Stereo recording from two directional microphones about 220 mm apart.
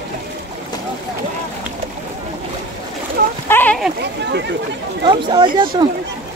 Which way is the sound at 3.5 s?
5° left (ahead or behind).